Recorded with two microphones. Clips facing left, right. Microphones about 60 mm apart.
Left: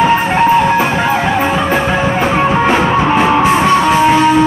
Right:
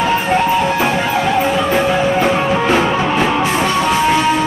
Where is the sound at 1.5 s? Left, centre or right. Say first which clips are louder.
Left 1 dB; left.